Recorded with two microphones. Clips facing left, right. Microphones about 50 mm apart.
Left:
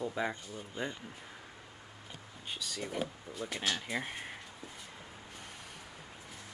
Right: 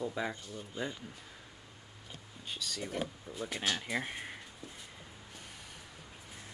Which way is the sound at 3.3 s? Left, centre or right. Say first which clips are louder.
Even; left.